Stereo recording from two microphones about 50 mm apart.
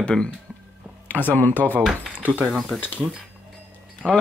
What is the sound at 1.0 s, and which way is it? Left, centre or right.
Speech, left.